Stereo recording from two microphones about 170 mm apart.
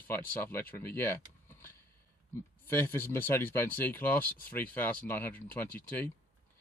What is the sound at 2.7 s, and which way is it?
Speech, 15° left (ahead or behind).